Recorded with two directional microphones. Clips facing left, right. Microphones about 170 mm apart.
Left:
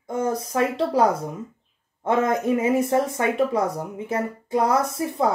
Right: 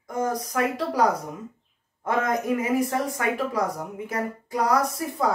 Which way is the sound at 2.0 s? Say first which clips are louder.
Left 3 dB; 25° left (ahead or behind).